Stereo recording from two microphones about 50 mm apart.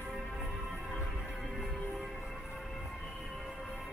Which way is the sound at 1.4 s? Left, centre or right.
Centre.